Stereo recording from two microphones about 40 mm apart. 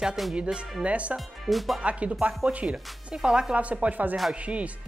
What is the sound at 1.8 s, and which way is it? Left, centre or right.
Speech, right.